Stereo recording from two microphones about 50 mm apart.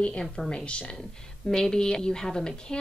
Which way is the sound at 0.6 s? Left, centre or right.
Left.